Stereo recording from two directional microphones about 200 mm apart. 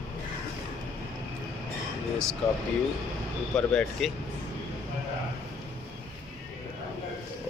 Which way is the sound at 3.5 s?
5° left (ahead or behind).